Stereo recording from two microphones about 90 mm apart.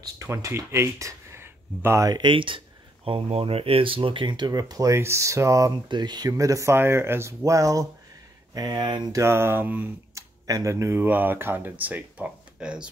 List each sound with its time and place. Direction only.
0.0 s speech: 35° right (ahead or behind)
2.0 s speech: 60° right (ahead or behind)
3.1 s speech: 90° right; by 4.5 s 60° right (ahead or behind)
4.5 s speech: 40° right (ahead or behind)
5.9 s speech: 55° right (ahead or behind); by 7.9 s 40° right (ahead or behind)
8.5 s speech: 55° right (ahead or behind)
9.1 s speech: 30° right (ahead or behind)
10.1 s tick-tock: 40° right (ahead or behind)
11.0 s speech: 20° right (ahead or behind)